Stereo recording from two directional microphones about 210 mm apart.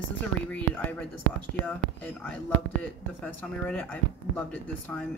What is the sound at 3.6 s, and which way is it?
Speech, 5° left (ahead or behind).